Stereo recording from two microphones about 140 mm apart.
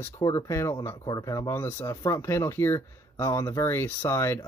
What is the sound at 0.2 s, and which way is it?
Speech, 25° left (ahead or behind).